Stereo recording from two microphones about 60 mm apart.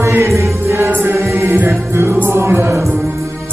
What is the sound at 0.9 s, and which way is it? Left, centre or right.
Music, right.